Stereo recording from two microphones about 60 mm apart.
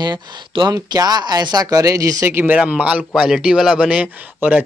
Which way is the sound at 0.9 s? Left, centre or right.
Right.